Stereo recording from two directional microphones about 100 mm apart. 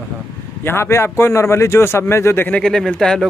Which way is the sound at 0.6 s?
25° left (ahead or behind).